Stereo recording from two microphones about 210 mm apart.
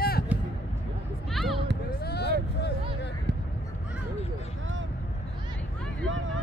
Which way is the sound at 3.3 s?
55° right (ahead or behind).